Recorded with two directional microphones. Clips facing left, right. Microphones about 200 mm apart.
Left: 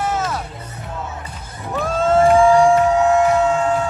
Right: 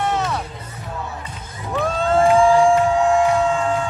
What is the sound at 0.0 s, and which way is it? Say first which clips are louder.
Music: even; centre (ahead or behind).